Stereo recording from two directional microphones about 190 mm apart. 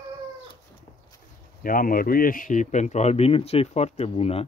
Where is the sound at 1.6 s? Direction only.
45° left (ahead or behind).